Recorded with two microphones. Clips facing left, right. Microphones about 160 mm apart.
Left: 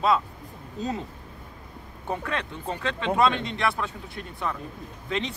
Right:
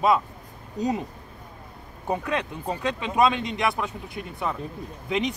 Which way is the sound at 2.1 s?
15° right (ahead or behind).